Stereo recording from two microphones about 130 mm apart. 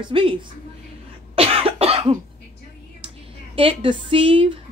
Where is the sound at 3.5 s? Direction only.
45° right (ahead or behind).